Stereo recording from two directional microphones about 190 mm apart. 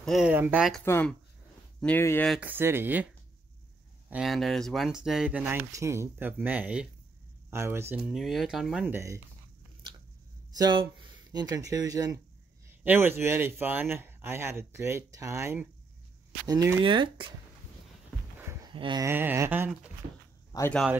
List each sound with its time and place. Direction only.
0.0 s speech: centre (ahead or behind)
0.8 s speech: 10° left (ahead or behind)
2.3 s speech: 10° right (ahead or behind)
4.1 s speech: centre (ahead or behind)
8.1 s speech: centre (ahead or behind)
10.6 s speech: 25° right (ahead or behind)
18.4 s a sound: 15° right (ahead or behind)
18.7 s speech: 25° right (ahead or behind)
20.5 s speech: 15° left (ahead or behind)